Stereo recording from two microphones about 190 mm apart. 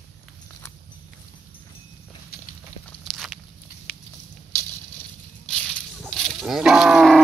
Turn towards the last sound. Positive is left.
turn(degrees=0)  # may be behind; listen again after turning